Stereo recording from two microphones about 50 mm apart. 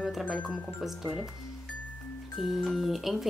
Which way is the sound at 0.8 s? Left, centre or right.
Centre.